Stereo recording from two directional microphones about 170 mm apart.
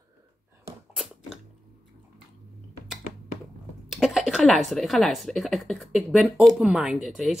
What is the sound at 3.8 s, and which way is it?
Speech, centre (ahead or behind).